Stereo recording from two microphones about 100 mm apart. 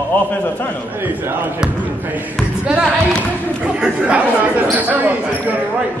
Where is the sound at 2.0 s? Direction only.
15° right (ahead or behind).